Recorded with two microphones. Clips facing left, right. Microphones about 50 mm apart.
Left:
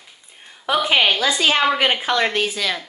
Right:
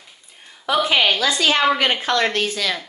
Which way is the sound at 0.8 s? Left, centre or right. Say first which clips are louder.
Left 1 dB; centre.